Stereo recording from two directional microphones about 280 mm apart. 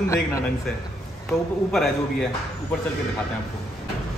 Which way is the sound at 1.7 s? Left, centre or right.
Centre.